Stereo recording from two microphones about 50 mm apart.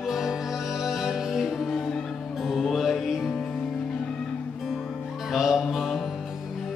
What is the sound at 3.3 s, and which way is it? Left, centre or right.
Music, centre.